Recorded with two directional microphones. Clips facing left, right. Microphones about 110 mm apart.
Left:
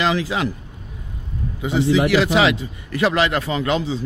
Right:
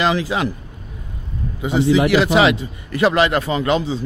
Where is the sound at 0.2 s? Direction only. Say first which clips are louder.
Right 2 dB; 40° right (ahead or behind).